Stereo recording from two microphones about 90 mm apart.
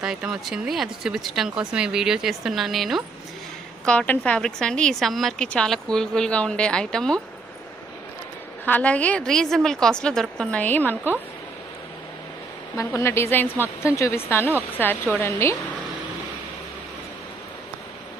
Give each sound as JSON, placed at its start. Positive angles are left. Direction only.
{"t": 0.0, "sound": "speech", "side_deg": -5}
{"t": 3.8, "sound": "a woman's voice", "side_deg": 15}
{"t": 8.6, "sound": "a woman's voice", "side_deg": 15}
{"t": 10.6, "sound": "a woman's voice", "side_deg": 20}
{"t": 12.9, "sound": "a woman's voice", "side_deg": 30}